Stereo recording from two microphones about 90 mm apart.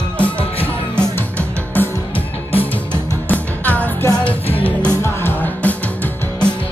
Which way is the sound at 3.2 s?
15° left (ahead or behind).